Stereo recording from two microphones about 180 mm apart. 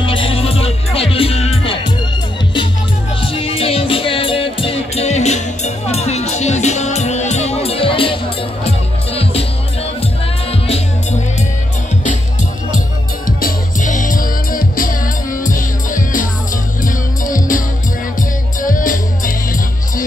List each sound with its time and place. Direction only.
0.0 s music: 30° left (ahead or behind)
3.2 s music: 30° left (ahead or behind)
10.5 s music: 35° left (ahead or behind)
13.4 s music: 45° left (ahead or behind)